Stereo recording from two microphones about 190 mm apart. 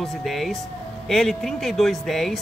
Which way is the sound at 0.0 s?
Centre (ahead or behind).